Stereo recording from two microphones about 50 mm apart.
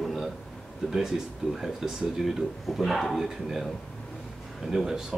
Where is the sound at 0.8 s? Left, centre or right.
Centre.